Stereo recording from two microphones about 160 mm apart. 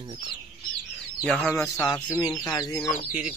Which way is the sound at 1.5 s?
20° left (ahead or behind).